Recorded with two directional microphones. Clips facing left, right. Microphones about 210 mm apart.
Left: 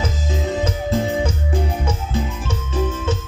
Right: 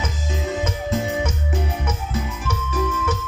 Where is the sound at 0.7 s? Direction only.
35° left (ahead or behind).